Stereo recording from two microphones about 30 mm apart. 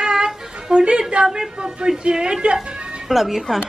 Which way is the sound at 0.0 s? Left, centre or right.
Right.